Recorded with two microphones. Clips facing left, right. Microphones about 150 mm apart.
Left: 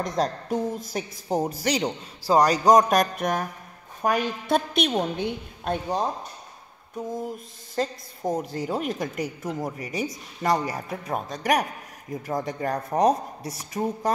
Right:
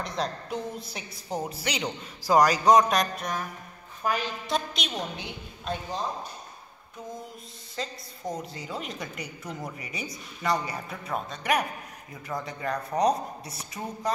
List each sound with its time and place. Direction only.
0.0 s a woman's voice: 45° left (ahead or behind); by 6.0 s 60° left (ahead or behind)
7.2 s a woman's voice: 50° left (ahead or behind)